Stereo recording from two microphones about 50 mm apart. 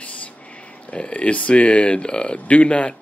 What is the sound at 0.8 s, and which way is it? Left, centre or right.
Speech, left.